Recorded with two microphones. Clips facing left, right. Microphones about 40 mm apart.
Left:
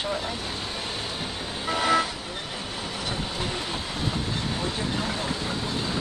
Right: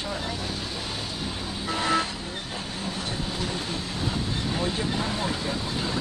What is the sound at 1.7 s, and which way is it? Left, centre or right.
Speech, left.